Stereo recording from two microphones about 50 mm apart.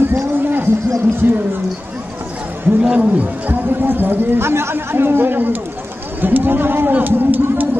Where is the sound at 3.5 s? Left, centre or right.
Right.